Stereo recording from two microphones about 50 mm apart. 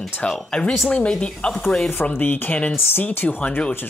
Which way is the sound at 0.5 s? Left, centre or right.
Centre.